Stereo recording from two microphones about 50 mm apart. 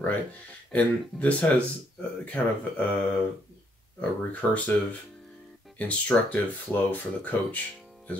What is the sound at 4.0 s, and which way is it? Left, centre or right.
Speech, left.